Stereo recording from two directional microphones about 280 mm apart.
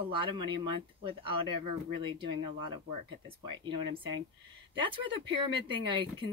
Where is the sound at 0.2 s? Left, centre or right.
Centre.